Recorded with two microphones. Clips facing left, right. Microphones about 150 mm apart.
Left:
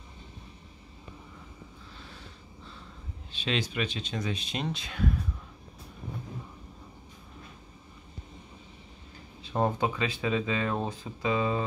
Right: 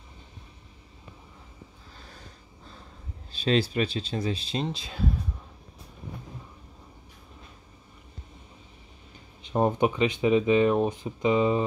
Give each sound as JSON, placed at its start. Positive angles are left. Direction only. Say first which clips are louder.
{"t": 2.0, "sound": "snort", "louder": "right 2 dB", "side_deg": -40}
{"t": 3.3, "sound": "speech", "louder": "right 7 dB", "side_deg": -35}
{"t": 9.5, "sound": "speech", "louder": "right 4 dB", "side_deg": -20}